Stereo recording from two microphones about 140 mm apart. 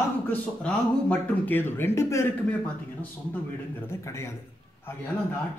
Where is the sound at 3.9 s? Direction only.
20° left (ahead or behind).